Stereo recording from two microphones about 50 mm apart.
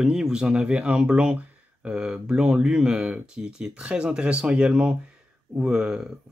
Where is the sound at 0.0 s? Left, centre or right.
Centre.